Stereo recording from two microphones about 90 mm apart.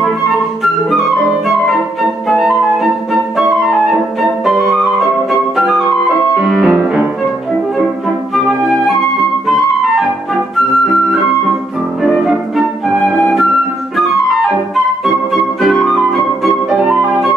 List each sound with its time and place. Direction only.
2.4 s flute: centre (ahead or behind)
6.3 s music: centre (ahead or behind)
6.8 s music: 15° right (ahead or behind)
12.0 s music: centre (ahead or behind)
15.6 s flute: centre (ahead or behind)
16.7 s flute: 10° right (ahead or behind)